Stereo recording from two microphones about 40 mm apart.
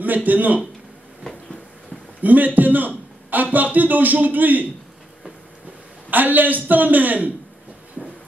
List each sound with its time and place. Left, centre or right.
0.0 s a man's voice: right
2.2 s a man's voice: right
6.0 s a man's voice: right